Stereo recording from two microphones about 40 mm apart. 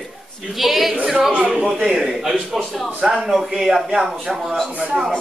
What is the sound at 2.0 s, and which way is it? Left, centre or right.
Speech, centre.